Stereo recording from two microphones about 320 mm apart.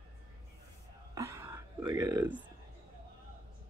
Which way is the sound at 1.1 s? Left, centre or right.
Centre.